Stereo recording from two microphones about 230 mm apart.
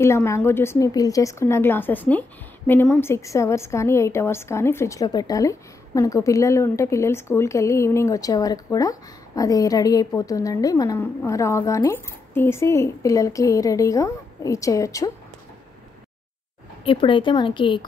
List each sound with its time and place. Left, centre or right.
0.0 s a woman's voice: centre
16.8 s a woman's voice: left